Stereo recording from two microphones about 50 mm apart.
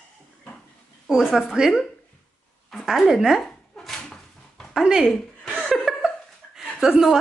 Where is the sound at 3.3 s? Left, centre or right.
Centre.